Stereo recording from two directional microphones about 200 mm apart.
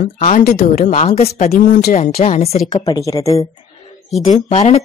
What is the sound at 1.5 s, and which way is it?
Speech, 50° left (ahead or behind).